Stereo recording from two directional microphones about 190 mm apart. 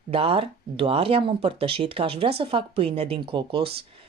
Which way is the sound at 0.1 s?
30° right (ahead or behind).